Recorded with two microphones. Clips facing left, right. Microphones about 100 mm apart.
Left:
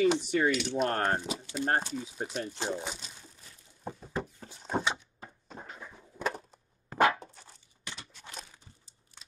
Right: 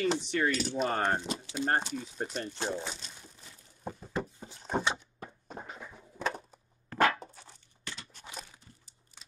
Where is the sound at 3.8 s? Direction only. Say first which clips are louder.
Even; 5° left (ahead or behind).